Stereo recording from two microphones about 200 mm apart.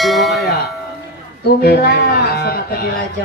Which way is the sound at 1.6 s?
50° left (ahead or behind).